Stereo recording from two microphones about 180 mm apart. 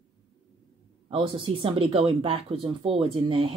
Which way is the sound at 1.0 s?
30° right (ahead or behind).